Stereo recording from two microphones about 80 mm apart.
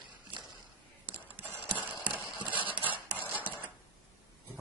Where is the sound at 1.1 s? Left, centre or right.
Right.